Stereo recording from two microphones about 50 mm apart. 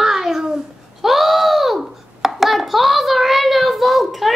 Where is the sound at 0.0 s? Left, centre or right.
Centre.